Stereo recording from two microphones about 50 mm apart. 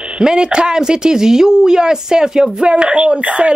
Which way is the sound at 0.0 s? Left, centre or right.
Centre.